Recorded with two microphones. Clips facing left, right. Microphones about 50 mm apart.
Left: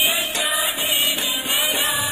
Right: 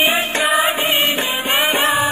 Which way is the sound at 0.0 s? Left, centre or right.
Right.